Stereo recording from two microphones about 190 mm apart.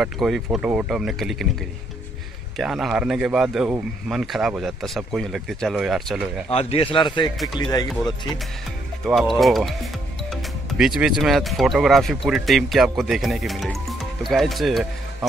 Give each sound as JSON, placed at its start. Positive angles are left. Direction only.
{"t": 0.0, "sound": "speech", "side_deg": 0}
{"t": 2.5, "sound": "speech", "side_deg": 0}
{"t": 6.5, "sound": "speech", "side_deg": 30}
{"t": 9.0, "sound": "speech", "side_deg": 0}